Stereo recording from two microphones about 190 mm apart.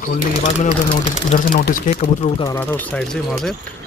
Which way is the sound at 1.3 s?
50° left (ahead or behind).